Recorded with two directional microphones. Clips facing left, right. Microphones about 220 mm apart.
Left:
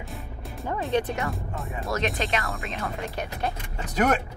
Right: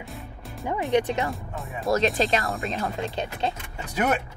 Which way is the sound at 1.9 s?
30° right (ahead or behind).